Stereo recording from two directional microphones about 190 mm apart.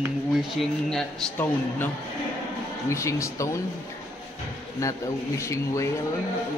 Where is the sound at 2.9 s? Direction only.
15° left (ahead or behind).